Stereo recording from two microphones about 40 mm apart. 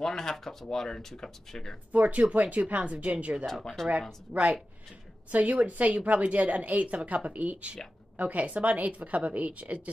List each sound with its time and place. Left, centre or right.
0.0 s speech: centre
1.9 s a woman's voice: right
3.6 s speech: centre
4.3 s speech: centre
5.3 s a woman's voice: right